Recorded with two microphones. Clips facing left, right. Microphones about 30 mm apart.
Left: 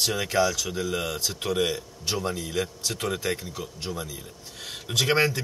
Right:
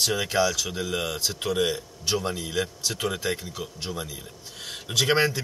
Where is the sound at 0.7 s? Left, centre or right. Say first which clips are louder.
Even; centre.